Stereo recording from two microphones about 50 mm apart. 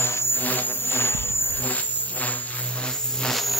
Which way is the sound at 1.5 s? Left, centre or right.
Left.